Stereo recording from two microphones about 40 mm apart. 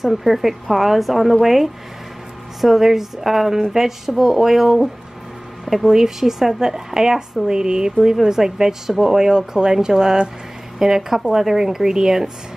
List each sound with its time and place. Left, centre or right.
0.0 s a woman's voice: centre